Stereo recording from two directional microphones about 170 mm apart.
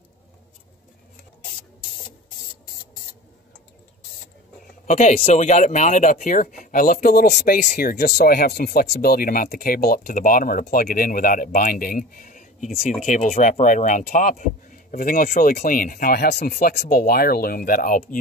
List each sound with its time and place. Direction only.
4.8 s speech: 50° left (ahead or behind)